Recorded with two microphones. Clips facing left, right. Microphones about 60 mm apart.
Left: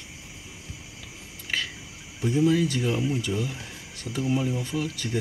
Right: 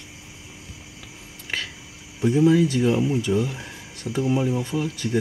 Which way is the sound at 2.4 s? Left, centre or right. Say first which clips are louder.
Right 5 dB; centre.